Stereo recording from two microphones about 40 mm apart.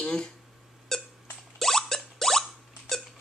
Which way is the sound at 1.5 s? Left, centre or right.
Centre.